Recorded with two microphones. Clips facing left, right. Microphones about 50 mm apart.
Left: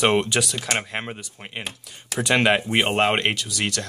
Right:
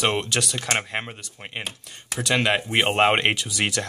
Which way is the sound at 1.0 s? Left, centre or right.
Centre.